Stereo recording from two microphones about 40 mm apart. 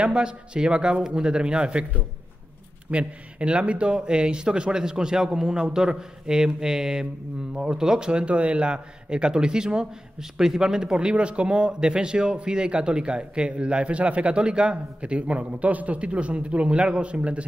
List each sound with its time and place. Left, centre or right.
0.0 s a man's voice: right
2.9 s a man's voice: right